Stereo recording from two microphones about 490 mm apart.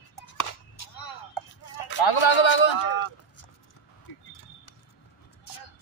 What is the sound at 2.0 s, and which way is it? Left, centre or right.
Speech, left.